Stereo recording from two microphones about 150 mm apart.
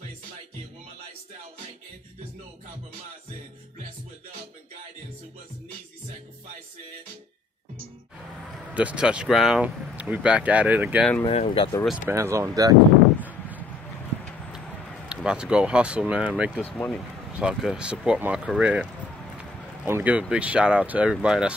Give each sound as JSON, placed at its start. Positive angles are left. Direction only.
{"t": 8.7, "sound": "speech", "side_deg": -10}
{"t": 11.2, "sound": "speech", "side_deg": 35}
{"t": 12.1, "sound": "speech", "side_deg": -20}
{"t": 15.0, "sound": "speech", "side_deg": -5}
{"t": 16.5, "sound": "speech", "side_deg": 5}
{"t": 17.4, "sound": "speech", "side_deg": -5}